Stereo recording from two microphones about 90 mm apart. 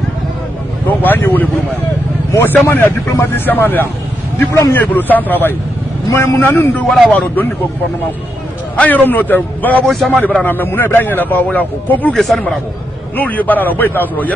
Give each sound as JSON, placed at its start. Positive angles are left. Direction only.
{"t": 0.8, "sound": "a man's voice", "side_deg": 20}
{"t": 8.7, "sound": "a man's voice", "side_deg": 20}
{"t": 9.8, "sound": "speech", "side_deg": 0}
{"t": 10.1, "sound": "a man's voice", "side_deg": 15}
{"t": 12.2, "sound": "speech", "side_deg": 5}
{"t": 13.1, "sound": "a man's voice", "side_deg": 20}